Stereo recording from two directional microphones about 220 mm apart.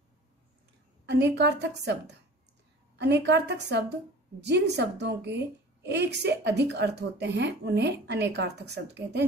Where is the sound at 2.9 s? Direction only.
50° right (ahead or behind).